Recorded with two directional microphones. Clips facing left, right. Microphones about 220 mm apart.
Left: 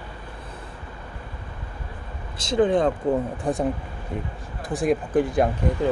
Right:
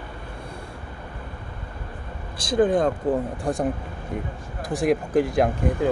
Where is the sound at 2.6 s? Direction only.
5° right (ahead or behind).